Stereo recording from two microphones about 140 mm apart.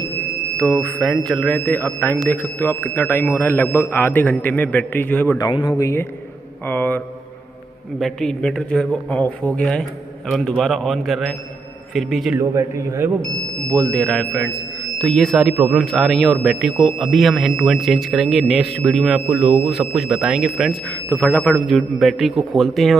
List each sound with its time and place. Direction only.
0.6 s speech: 10° left (ahead or behind)
5.4 s speech: 30° left (ahead or behind)
5.8 s a man's voice: 20° left (ahead or behind)
8.0 s speech: centre (ahead or behind)
12.4 s a man's voice: 20° right (ahead or behind)
13.7 s speech: 5° left (ahead or behind)
15.5 s speech: 10° right (ahead or behind)
15.8 s speech: centre (ahead or behind)
21.1 s speech: 10° left (ahead or behind)